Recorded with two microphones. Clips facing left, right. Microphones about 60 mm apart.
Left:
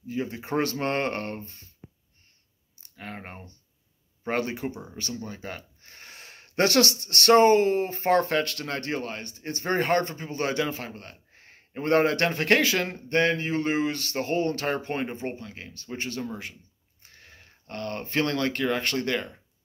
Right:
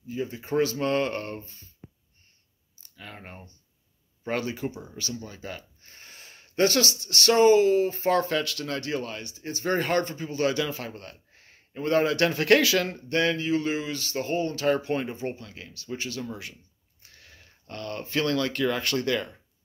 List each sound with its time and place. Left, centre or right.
0.1 s speech: left
3.0 s speech: left
10.8 s speech: left
12.3 s speech: left
17.1 s a sound: left
18.2 s speech: left